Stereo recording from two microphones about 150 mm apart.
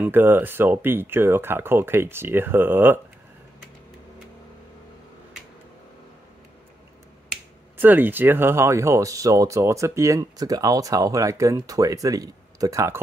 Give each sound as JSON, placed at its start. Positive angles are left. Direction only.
{"t": 0.0, "sound": "speech", "side_deg": -15}
{"t": 7.7, "sound": "speech", "side_deg": -10}